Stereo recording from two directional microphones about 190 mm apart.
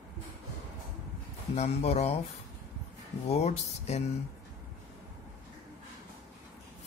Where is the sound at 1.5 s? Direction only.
35° left (ahead or behind).